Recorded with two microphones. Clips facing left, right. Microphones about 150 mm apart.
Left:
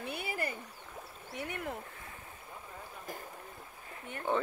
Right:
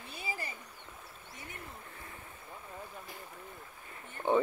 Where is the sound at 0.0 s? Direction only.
65° left (ahead or behind).